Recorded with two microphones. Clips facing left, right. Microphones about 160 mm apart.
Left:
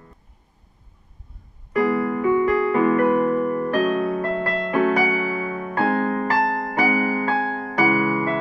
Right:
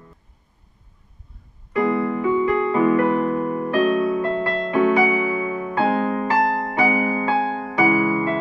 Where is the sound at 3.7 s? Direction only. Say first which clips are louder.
Right 5 dB; 40° left (ahead or behind).